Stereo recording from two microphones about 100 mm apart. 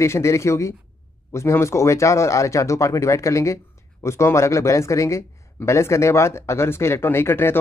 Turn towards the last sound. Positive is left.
turn(degrees=25)  # may be behind; listen again after turning